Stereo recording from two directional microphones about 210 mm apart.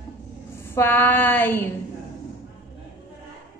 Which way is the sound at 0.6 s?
10° left (ahead or behind).